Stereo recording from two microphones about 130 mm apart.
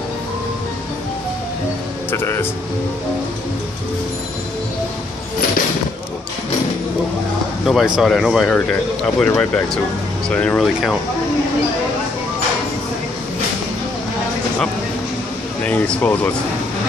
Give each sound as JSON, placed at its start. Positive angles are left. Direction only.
{"t": 2.0, "sound": "speech", "side_deg": 20}
{"t": 7.6, "sound": "speech", "side_deg": -5}
{"t": 10.3, "sound": "speech", "side_deg": 10}
{"t": 10.6, "sound": "speech", "side_deg": 0}
{"t": 15.6, "sound": "speech", "side_deg": 10}